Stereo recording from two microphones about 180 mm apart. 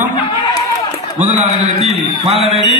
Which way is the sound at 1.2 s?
35° right (ahead or behind).